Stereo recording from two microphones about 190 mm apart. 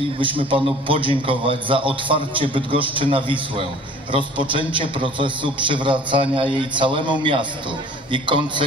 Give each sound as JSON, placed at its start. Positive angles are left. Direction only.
{"t": 0.2, "sound": "a man's voice", "side_deg": -25}